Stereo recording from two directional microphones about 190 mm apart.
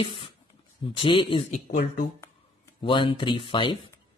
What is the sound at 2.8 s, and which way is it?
Speech, 25° left (ahead or behind).